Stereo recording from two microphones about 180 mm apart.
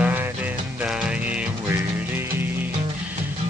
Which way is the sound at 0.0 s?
10° right (ahead or behind).